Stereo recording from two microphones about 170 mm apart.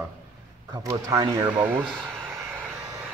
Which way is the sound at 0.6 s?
20° right (ahead or behind).